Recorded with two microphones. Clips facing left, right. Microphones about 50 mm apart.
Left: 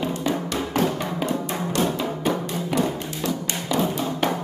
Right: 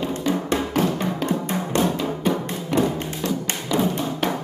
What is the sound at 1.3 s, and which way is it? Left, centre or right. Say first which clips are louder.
Music: right 2 dB; right.